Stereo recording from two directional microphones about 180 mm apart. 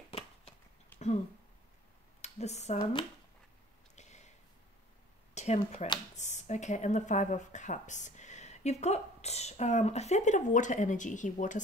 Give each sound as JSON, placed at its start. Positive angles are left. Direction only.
{"t": 2.2, "sound": "speech", "side_deg": 40}
{"t": 2.8, "sound": "speech", "side_deg": 25}
{"t": 3.9, "sound": "a sound", "side_deg": 40}
{"t": 5.3, "sound": "speech", "side_deg": 40}